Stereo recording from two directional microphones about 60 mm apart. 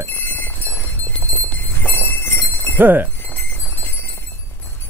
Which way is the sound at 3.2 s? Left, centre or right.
Left.